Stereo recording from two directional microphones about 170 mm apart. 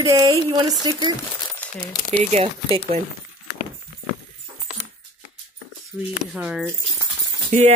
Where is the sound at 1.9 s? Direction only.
5° left (ahead or behind).